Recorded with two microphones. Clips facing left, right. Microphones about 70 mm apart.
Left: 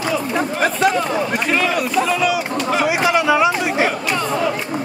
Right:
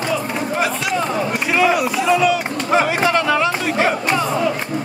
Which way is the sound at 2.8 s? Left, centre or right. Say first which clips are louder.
Left 1 dB; centre.